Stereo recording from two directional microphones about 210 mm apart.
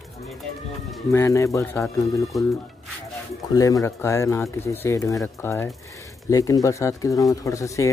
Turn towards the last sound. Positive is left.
turn(degrees=15)  # may be behind; listen again after turning